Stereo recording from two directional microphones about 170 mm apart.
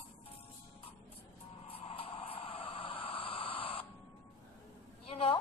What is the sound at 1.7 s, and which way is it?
Vehicle, 35° left (ahead or behind).